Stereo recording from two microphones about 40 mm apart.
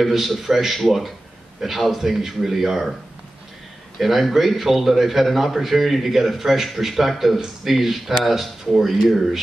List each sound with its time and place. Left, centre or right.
0.0 s a man's voice: centre
4.0 s a man's voice: centre